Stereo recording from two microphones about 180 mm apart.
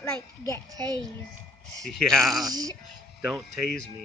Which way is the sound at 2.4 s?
20° right (ahead or behind).